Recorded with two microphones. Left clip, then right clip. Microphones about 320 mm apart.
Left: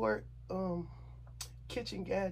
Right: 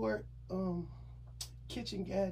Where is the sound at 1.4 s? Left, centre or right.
Centre.